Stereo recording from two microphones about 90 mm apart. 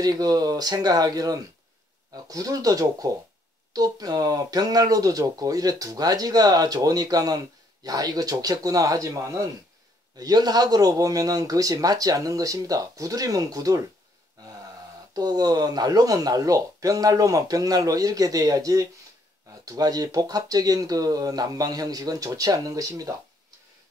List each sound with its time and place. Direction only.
0.0 s speech: 45° right (ahead or behind)
15.1 s speech: 45° right (ahead or behind)